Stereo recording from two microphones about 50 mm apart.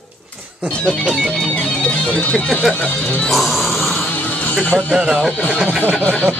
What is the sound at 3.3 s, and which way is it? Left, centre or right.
Grunt, centre.